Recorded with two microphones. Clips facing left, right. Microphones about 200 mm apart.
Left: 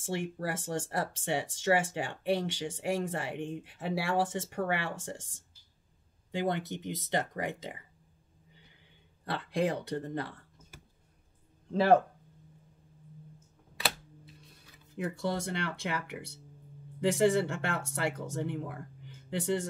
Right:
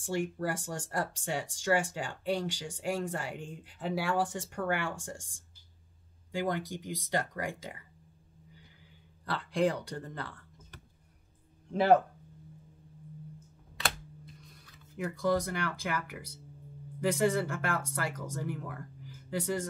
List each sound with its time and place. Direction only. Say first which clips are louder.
0.0 s speech: right 2 dB; 25° left (ahead or behind)
6.3 s speech: left 1 dB; 25° left (ahead or behind)
9.2 s speech: right 1 dB; 25° left (ahead or behind)
13.7 s a sound: left 1 dB; 5° left (ahead or behind)
15.0 s speech: right 3 dB; 25° left (ahead or behind)